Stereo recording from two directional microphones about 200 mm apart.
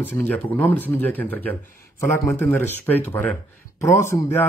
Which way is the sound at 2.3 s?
10° left (ahead or behind).